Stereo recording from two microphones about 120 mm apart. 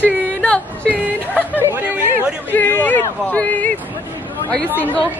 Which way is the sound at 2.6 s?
15° left (ahead or behind).